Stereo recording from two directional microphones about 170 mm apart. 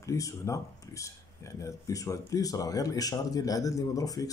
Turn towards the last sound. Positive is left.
turn(degrees=20)  # may be behind; listen again after turning